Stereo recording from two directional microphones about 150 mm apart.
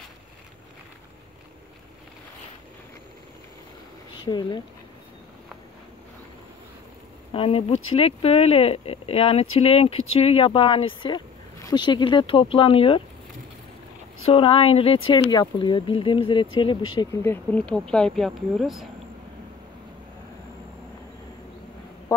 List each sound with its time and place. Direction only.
4.2 s speech: 30° left (ahead or behind)
7.3 s speech: 40° left (ahead or behind)
14.2 s speech: 35° left (ahead or behind)
17.2 s speech: 15° left (ahead or behind)